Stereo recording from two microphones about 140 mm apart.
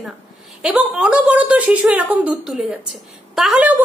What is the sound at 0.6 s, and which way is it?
A woman's voice, 5° right (ahead or behind).